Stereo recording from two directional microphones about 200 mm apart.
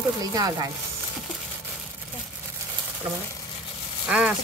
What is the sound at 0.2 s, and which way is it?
Speech, 20° right (ahead or behind).